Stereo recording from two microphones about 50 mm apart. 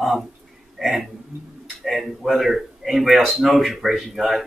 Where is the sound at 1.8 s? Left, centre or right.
Centre.